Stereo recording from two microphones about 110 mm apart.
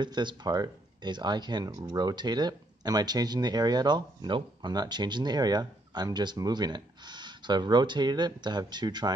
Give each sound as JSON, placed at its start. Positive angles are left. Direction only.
{"t": 0.0, "sound": "speech", "side_deg": -45}